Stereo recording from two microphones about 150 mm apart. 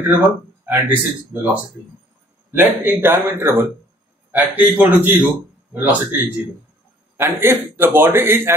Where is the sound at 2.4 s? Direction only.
15° right (ahead or behind).